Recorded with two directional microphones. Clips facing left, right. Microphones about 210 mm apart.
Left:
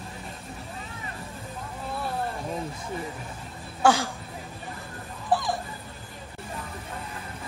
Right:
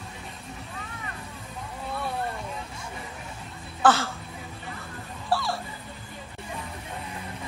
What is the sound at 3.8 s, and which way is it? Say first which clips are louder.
Speech: even; 15° left (ahead or behind).